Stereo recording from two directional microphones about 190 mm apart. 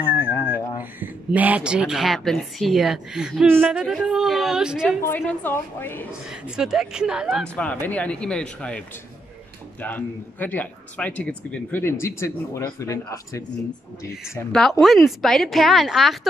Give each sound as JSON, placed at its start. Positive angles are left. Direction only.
{"t": 0.0, "sound": "a sound", "side_deg": 10}
{"t": 0.9, "sound": "speech", "side_deg": -10}
{"t": 5.4, "sound": "a man's voice", "side_deg": 10}
{"t": 6.2, "sound": "a man's voice", "side_deg": -5}
{"t": 14.5, "sound": "speech", "side_deg": 0}